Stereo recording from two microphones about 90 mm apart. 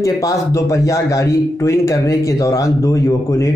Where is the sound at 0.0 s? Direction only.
40° left (ahead or behind).